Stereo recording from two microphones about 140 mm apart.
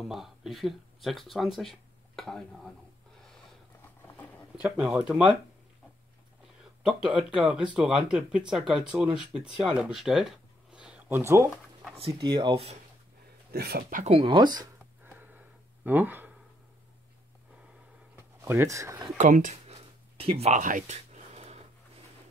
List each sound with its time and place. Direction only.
0.1 s speech: centre (ahead or behind)
4.6 s speech: 10° right (ahead or behind)
6.8 s speech: 5° right (ahead or behind)
10.7 s a sound: 5° right (ahead or behind)
12.0 s speech: 40° right (ahead or behind)
13.5 s speech: 90° right
14.2 s speech: 35° right (ahead or behind)
15.0 s a sound: 10° right (ahead or behind)
18.1 s speech: 15° right (ahead or behind)
19.1 s speech: 65° right (ahead or behind); by 20.6 s 45° right (ahead or behind)
20.6 s a sound: 60° right (ahead or behind)